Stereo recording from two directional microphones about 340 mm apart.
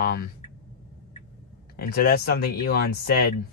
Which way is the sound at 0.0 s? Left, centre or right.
Left.